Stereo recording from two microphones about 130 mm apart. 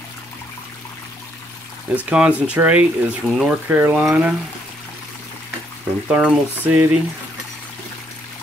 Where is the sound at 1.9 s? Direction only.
10° right (ahead or behind).